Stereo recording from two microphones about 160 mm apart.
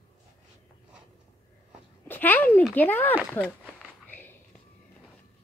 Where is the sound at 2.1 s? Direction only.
10° left (ahead or behind).